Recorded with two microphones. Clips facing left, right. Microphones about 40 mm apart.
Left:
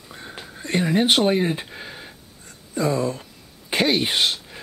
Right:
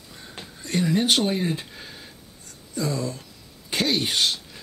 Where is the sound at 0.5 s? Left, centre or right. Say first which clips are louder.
Left 3 dB; left.